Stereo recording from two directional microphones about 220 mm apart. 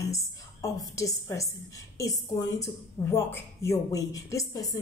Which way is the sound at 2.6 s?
10° left (ahead or behind).